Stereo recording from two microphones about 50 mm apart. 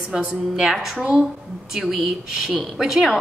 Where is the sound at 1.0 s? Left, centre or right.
Right.